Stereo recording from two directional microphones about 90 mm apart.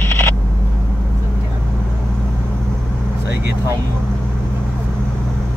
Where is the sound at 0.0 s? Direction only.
25° left (ahead or behind).